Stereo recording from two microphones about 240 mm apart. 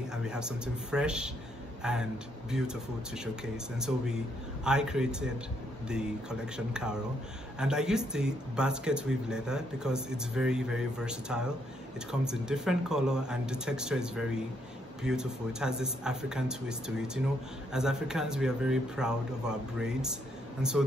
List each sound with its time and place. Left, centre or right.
0.1 s speech: centre
6.5 s speech: centre